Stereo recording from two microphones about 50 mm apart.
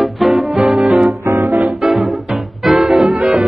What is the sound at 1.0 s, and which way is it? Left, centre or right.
Music, right.